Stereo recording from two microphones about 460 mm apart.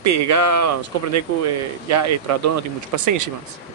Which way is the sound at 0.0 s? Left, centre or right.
Right.